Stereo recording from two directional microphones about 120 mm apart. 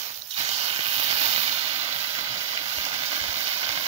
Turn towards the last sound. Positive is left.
turn(degrees=-60)  # may be behind; listen again after turning